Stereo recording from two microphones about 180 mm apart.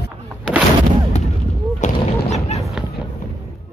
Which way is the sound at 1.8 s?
35° left (ahead or behind).